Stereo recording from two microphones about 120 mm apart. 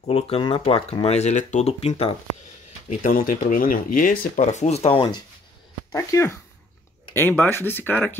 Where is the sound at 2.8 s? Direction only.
75° left (ahead or behind).